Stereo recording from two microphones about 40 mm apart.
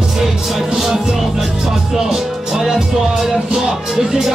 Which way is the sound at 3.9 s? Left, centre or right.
Centre.